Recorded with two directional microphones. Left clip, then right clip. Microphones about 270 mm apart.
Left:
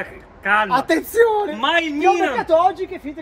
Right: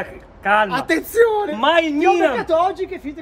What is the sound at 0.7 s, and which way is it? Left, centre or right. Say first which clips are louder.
Speech: left 2 dB; centre.